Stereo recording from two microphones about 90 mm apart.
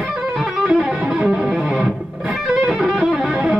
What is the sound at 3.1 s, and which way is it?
Music, 5° right (ahead or behind).